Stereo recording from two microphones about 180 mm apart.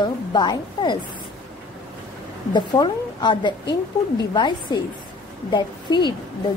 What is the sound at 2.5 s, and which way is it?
A woman's voice, 25° left (ahead or behind).